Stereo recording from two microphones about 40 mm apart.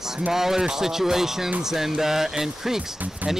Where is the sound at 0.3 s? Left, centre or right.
Centre.